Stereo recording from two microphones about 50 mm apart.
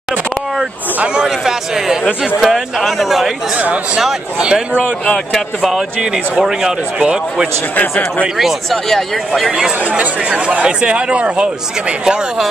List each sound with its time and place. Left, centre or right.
1.2 s speech: centre
3.5 s speech: right
5.3 s speech: centre
5.9 s speech: centre
8.4 s speech: centre
9.5 s speech: centre
9.8 s speech: right
10.2 s speech: right